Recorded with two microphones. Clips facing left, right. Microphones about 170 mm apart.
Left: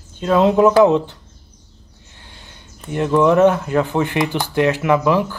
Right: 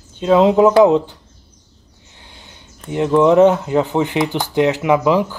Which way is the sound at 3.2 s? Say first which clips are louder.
Right 2 dB; 20° right (ahead or behind).